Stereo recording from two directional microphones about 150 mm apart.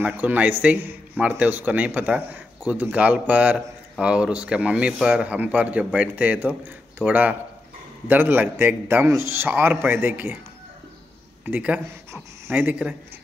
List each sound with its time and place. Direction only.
0.0 s speech: 10° right (ahead or behind)
11.4 s speech: 10° right (ahead or behind)